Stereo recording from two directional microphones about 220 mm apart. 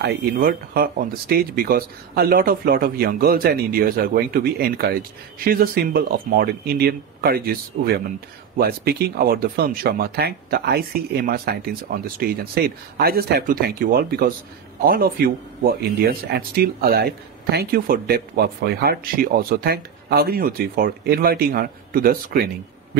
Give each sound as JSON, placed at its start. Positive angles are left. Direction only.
{"t": 0.0, "sound": "speech", "side_deg": -45}